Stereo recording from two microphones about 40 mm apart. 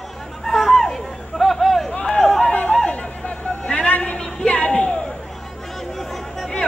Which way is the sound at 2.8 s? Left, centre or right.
Left.